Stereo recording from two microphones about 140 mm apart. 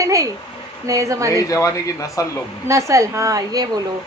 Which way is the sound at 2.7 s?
20° right (ahead or behind).